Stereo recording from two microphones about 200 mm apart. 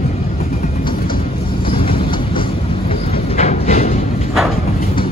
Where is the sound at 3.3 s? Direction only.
35° left (ahead or behind).